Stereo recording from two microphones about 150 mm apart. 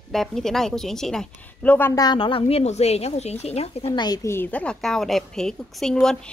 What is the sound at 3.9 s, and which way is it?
Speech, 30° left (ahead or behind).